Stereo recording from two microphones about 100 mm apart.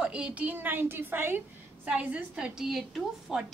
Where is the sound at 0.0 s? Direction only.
10° right (ahead or behind).